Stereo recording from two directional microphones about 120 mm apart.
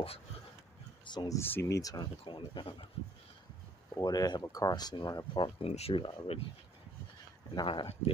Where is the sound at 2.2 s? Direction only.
40° left (ahead or behind).